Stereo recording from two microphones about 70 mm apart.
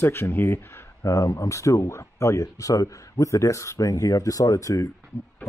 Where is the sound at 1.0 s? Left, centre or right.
Left.